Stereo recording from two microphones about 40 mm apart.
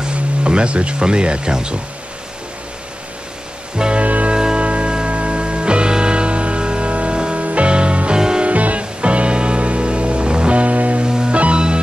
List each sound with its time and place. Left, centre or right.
0.0 s speech: right
3.7 s music: centre
4.0 s music: right
4.3 s music: right
8.2 s music: centre
8.5 s music: right
11.1 s music: centre